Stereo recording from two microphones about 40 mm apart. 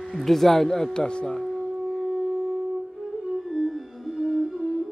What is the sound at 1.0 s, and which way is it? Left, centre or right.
Speech, left.